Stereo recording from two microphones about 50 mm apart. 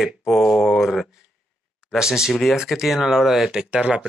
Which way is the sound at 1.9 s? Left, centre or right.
Centre.